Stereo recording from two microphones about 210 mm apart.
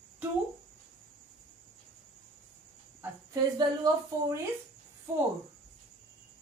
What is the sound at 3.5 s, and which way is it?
Speech, 20° right (ahead or behind).